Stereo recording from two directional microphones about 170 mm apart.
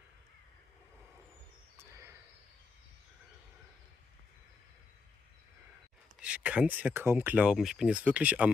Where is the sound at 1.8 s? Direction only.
15° right (ahead or behind).